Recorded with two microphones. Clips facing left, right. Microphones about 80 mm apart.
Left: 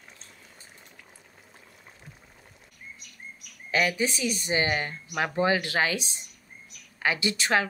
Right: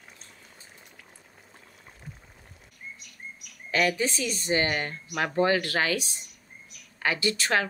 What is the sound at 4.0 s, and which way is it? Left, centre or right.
A woman's voice, centre.